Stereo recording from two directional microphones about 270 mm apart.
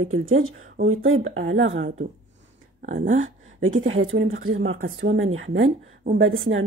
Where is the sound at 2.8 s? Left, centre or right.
Right.